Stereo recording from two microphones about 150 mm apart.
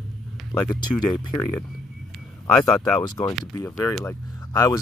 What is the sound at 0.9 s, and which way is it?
Speech, 30° left (ahead or behind).